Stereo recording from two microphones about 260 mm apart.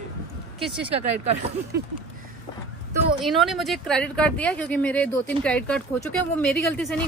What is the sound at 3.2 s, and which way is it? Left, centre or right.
Speech, centre.